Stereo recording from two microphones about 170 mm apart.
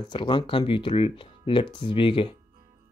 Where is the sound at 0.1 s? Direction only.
30° left (ahead or behind).